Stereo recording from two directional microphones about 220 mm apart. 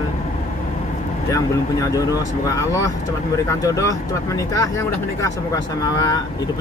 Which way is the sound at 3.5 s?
15° left (ahead or behind).